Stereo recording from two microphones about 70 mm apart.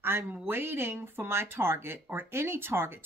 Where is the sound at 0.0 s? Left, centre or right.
Right.